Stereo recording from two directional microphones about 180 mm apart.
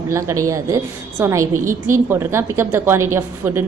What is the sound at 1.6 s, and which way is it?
Speech, 45° right (ahead or behind).